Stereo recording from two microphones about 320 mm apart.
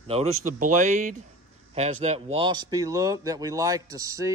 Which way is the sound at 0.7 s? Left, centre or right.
Right.